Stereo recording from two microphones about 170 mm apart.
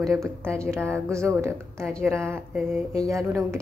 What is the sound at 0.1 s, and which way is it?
Speech, 15° right (ahead or behind).